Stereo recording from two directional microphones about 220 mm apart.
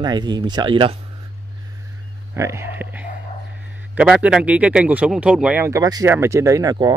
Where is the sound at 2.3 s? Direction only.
15° right (ahead or behind).